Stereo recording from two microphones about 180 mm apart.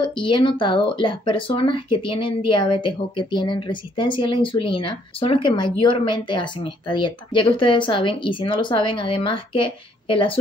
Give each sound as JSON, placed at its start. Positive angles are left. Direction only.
{"t": 0.0, "sound": "speech", "side_deg": 30}